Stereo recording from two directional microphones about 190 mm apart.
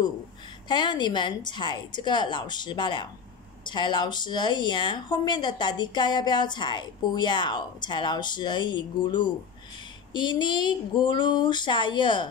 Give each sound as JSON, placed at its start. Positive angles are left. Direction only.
{"t": 0.7, "sound": "speech", "side_deg": 25}